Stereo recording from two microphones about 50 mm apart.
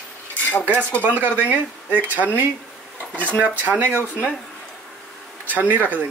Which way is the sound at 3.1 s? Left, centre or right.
Left.